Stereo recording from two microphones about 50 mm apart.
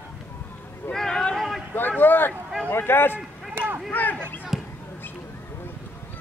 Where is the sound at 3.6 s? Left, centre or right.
Right.